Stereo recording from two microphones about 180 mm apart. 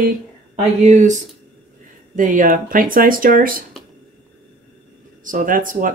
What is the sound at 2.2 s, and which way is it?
Speech, 50° right (ahead or behind).